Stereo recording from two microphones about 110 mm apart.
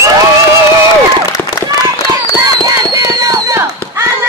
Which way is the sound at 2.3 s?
30° right (ahead or behind).